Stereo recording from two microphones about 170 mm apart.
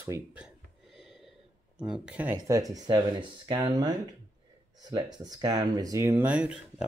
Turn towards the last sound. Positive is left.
turn(degrees=-5)  # may be behind; listen again after turning